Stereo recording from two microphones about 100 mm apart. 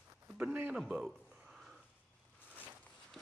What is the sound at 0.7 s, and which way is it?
Speech, 5° right (ahead or behind).